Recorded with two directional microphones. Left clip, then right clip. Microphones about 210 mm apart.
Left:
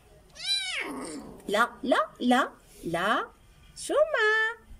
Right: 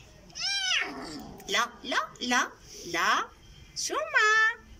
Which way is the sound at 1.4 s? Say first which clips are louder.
Left 3 dB; 40° left (ahead or behind).